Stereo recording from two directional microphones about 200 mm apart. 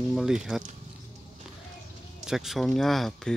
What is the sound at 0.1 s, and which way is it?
Speech, centre (ahead or behind).